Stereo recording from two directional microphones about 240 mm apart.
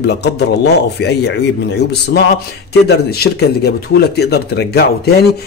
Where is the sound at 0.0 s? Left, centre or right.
Left.